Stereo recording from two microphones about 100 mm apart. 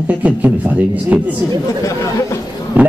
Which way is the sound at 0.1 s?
15° right (ahead or behind).